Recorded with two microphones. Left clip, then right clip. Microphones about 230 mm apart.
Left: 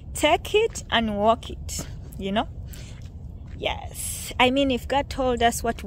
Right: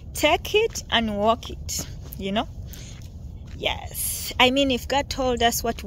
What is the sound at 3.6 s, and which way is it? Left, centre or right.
A woman's voice, centre.